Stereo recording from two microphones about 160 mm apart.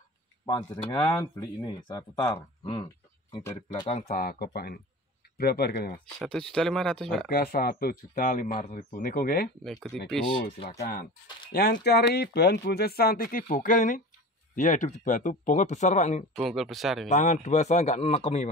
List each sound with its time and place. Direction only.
0.5 s speech: 25° left (ahead or behind)
4.1 s speech: 65° left (ahead or behind)
6.2 s speech: 5° left (ahead or behind)
7.2 s speech: 75° left (ahead or behind)
8.1 s speech: 55° left (ahead or behind)
9.6 s speech: centre (ahead or behind)
10.8 s speech: 90° left; by 16.3 s 45° left (ahead or behind)
16.3 s speech: centre (ahead or behind)
17.1 s speech: 50° left (ahead or behind)